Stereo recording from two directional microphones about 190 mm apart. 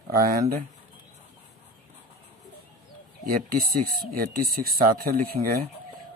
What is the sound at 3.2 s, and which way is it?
Speech, 50° right (ahead or behind).